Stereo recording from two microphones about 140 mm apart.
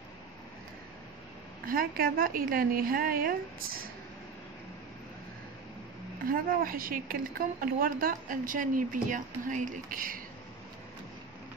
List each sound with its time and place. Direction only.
1.7 s a woman's voice: 90° right
6.2 s speech: 90° right